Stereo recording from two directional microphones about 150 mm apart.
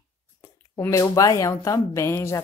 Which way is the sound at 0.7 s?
20° left (ahead or behind).